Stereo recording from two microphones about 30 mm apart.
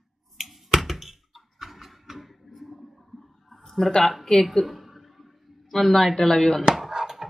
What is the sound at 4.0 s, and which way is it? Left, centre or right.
Speech, centre.